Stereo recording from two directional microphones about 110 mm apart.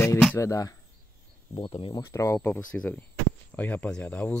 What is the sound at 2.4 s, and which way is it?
Speech, 15° left (ahead or behind).